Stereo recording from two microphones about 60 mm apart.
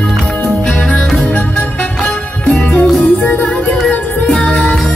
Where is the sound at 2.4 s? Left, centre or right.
Centre.